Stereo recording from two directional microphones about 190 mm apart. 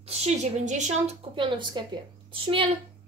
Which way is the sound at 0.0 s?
35° right (ahead or behind).